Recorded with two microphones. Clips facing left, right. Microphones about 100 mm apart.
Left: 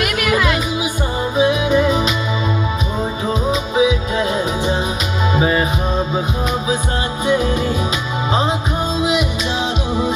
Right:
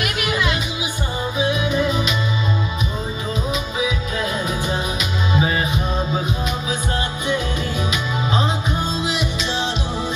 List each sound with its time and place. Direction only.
0.3 s music: 40° left (ahead or behind)
5.3 s music: 40° left (ahead or behind)